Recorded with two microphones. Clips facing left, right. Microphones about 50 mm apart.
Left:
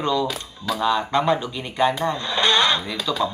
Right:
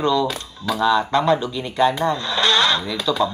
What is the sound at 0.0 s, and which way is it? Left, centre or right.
Speech, centre.